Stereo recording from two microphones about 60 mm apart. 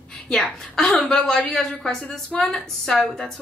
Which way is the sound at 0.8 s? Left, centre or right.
Centre.